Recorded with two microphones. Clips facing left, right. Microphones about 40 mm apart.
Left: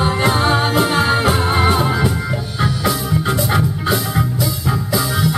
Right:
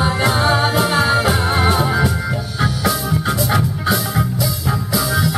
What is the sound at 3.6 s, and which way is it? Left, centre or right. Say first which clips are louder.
Music: even; centre.